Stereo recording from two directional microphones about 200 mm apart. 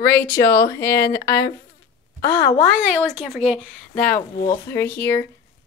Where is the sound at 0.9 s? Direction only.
55° left (ahead or behind).